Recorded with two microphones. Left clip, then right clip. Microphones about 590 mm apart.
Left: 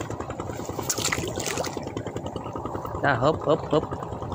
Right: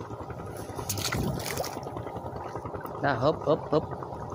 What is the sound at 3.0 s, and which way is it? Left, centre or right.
Speech, right.